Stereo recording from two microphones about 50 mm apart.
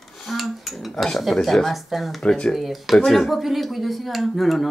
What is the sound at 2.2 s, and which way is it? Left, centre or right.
Speech, centre.